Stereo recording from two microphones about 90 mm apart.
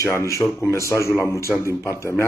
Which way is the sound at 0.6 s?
35° left (ahead or behind).